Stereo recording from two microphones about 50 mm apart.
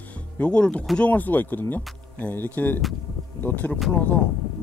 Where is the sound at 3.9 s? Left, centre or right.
Left.